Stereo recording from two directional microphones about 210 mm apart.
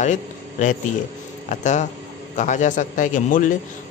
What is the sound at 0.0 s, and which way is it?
A man's voice, 35° left (ahead or behind).